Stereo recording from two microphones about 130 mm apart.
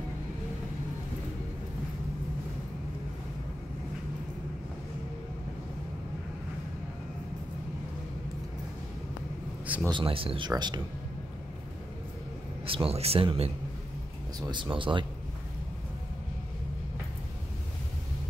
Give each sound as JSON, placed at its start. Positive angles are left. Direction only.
{"t": 9.8, "sound": "speech", "side_deg": -40}
{"t": 12.6, "sound": "speech", "side_deg": -45}
{"t": 14.5, "sound": "speech", "side_deg": -40}